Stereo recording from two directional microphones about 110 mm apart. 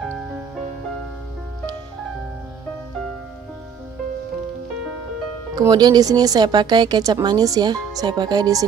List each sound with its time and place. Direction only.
5.6 s speech: 35° right (ahead or behind)